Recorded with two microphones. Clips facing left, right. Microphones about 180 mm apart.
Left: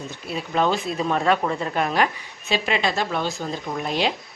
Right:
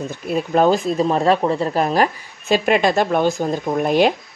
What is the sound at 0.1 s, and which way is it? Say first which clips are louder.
Speech: right 8 dB; 50° right (ahead or behind).